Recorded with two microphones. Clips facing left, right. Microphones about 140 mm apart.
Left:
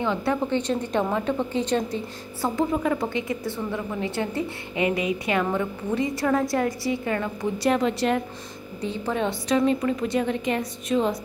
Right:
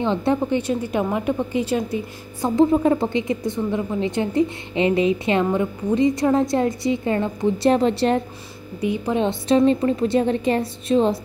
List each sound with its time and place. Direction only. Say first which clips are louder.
0.0 s a woman's voice: right 4 dB; 25° right (ahead or behind)
0.4 s a woman's voice: right 3 dB; 10° right (ahead or behind)
2.4 s a woman's voice: right 7 dB; 20° right (ahead or behind)
8.8 s a woman's voice: right 5 dB; 15° right (ahead or behind); by 11.1 s 30° right (ahead or behind)